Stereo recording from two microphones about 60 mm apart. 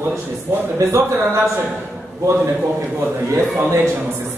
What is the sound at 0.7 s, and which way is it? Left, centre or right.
Speech, right.